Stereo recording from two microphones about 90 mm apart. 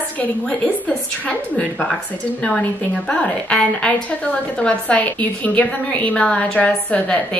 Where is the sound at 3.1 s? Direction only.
10° left (ahead or behind).